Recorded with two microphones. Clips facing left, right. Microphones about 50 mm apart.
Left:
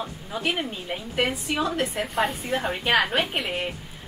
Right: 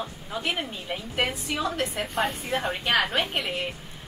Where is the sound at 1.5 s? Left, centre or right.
Centre.